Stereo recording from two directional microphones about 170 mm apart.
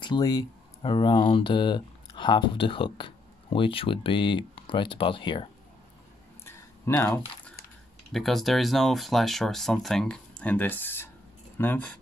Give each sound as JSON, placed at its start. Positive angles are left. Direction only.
{"t": 0.0, "sound": "speech", "side_deg": 25}
{"t": 7.0, "sound": "speech", "side_deg": 15}
{"t": 8.1, "sound": "speech", "side_deg": 0}